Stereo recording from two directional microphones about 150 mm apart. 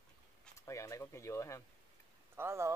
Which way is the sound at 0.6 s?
20° left (ahead or behind).